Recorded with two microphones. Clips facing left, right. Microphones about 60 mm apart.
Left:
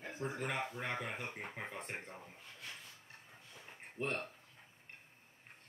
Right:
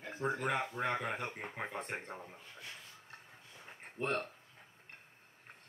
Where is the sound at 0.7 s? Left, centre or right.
Centre.